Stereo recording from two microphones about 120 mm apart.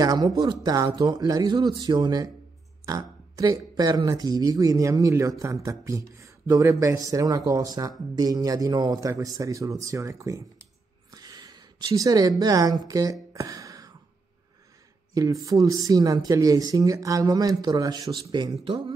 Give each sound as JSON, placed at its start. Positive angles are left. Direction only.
{"t": 0.0, "sound": "speech", "side_deg": -30}
{"t": 11.1, "sound": "a sound", "side_deg": -30}
{"t": 15.1, "sound": "speech", "side_deg": -30}